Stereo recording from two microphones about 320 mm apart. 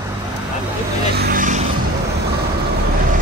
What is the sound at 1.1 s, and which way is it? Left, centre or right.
Vehicle, right.